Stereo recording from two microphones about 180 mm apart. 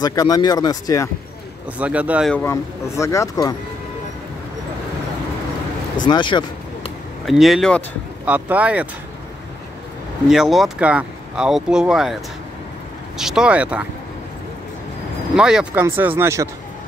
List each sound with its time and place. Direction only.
0.0 s speech: 20° left (ahead or behind)
1.8 s speech: 5° right (ahead or behind)
2.3 s speech: 15° left (ahead or behind)
6.0 s speech: 25° left (ahead or behind)
7.2 s speech: centre (ahead or behind)
10.2 s speech: 5° right (ahead or behind)
13.2 s speech: 5° right (ahead or behind)
15.3 s speech: 5° right (ahead or behind)